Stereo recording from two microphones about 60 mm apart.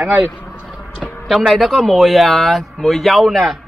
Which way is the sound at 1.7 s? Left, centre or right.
Centre.